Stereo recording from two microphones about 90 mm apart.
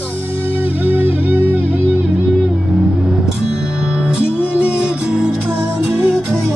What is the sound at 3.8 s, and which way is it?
Music, 10° right (ahead or behind).